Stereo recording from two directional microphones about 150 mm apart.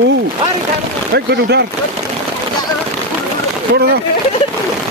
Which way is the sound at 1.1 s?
90° right.